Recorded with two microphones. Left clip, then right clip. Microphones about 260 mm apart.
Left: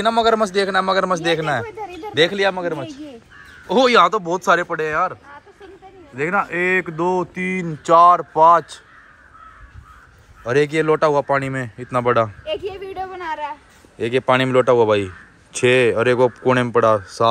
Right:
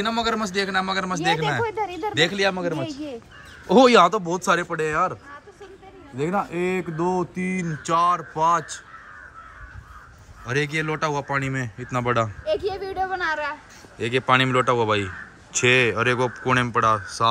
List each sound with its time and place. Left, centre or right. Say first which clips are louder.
0.0 s a man's voice: left 8 dB; centre
10.4 s a man's voice: left 7 dB; centre
12.9 s speech: right 3 dB; centre
13.9 s a man's voice: left 3 dB; centre